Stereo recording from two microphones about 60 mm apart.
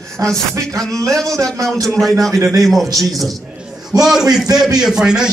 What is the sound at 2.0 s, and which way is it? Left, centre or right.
A man's voice, centre.